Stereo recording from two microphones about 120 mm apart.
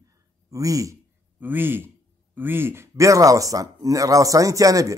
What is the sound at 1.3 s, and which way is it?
A man's voice, 15° right (ahead or behind).